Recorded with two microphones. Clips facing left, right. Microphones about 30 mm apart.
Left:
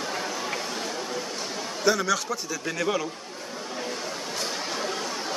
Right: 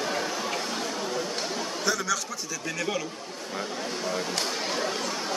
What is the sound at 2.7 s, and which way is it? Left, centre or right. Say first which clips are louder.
Speech: left 3 dB; centre.